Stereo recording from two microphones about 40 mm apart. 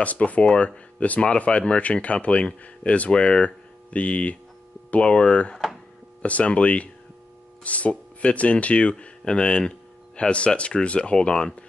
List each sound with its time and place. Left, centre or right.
0.0 s speech: left
9.3 s speech: left